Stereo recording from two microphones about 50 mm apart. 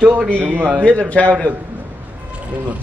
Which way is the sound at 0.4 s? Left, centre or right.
Right.